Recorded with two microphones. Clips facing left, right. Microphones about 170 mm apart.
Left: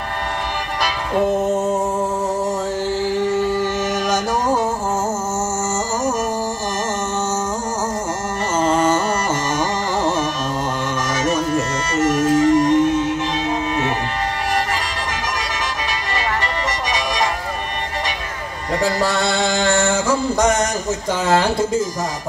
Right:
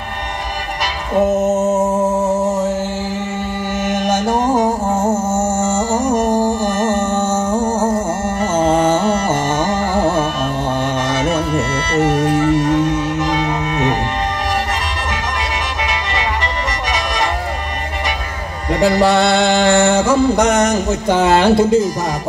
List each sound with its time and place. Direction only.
1.2 s music: 25° right (ahead or behind)
4.1 s music: 50° right (ahead or behind)
5.0 s music: 30° right (ahead or behind)
5.6 s music: 55° right (ahead or behind)
11.2 s music: 60° right (ahead or behind)
18.8 s a sound: 65° right (ahead or behind)